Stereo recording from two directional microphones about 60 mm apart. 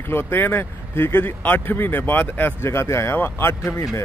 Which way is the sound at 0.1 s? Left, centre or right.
Left.